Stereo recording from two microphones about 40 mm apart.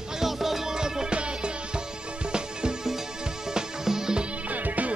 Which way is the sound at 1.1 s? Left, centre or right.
Right.